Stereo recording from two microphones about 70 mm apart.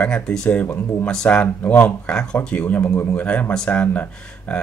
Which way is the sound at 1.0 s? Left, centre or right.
Centre.